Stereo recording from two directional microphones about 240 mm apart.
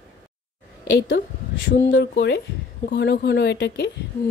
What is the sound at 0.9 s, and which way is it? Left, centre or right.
A woman's voice, left.